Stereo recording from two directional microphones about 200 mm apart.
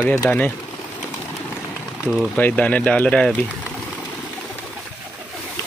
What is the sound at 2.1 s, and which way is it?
Speech, 5° right (ahead or behind).